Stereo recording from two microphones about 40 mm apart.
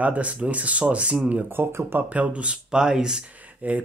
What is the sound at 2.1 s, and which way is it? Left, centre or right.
Speech, right.